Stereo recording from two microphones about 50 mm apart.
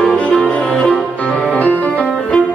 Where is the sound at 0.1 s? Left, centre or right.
Left.